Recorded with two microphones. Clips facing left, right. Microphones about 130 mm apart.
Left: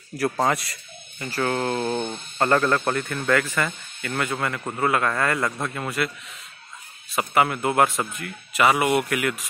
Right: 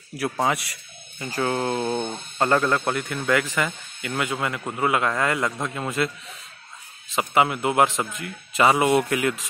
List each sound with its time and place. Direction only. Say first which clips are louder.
0.2 s speech: left 1 dB; 10° right (ahead or behind)
7.2 s speech: even; 15° right (ahead or behind)
8.5 s speech: right 1 dB; 25° right (ahead or behind)